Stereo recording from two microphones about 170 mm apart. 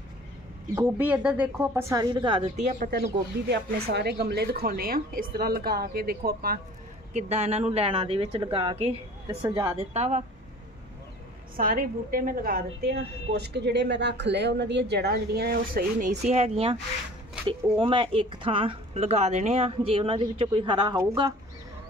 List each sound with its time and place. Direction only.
0.7 s speech: 10° right (ahead or behind); by 2.9 s 45° right (ahead or behind)
3.4 s a woman's voice: 75° right (ahead or behind)
7.2 s a woman's voice: 40° right (ahead or behind)
9.9 s speech: 40° right (ahead or behind)
11.5 s a woman's voice: 55° right (ahead or behind); by 21.3 s 20° right (ahead or behind)